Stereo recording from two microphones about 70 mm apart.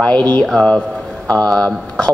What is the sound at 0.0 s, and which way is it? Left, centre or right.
Speech, left.